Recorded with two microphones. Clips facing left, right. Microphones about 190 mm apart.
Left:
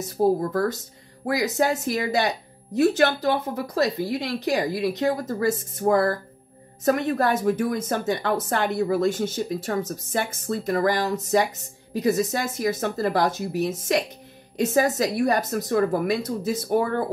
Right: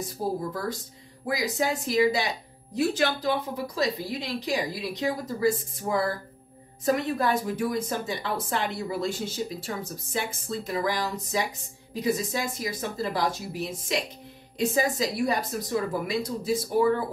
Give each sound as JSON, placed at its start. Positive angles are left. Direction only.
{"t": 0.4, "sound": "a woman's voice", "side_deg": 55}